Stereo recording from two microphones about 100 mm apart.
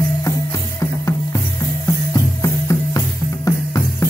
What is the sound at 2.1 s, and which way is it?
Music, 30° left (ahead or behind).